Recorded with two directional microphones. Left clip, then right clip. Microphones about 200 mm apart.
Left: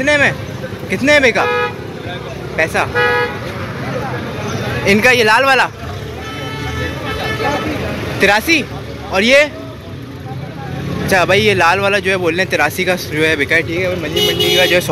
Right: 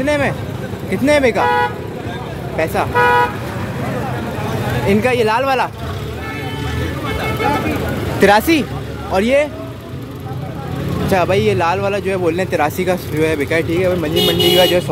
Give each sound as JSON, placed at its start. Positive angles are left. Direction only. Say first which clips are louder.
{"t": 0.0, "sound": "speech", "louder": "left 4 dB", "side_deg": -10}
{"t": 2.5, "sound": "speech", "louder": "left 2 dB", "side_deg": -10}
{"t": 4.8, "sound": "speech", "louder": "left 5 dB", "side_deg": 0}
{"t": 8.2, "sound": "speech", "louder": "even", "side_deg": -20}
{"t": 9.1, "sound": "speech", "louder": "left 4 dB", "side_deg": -5}
{"t": 11.1, "sound": "speech", "louder": "left 3 dB", "side_deg": -5}
{"t": 13.7, "sound": "speech", "louder": "right 2 dB", "side_deg": -25}
{"t": 14.6, "sound": "speech", "louder": "left 3 dB", "side_deg": -10}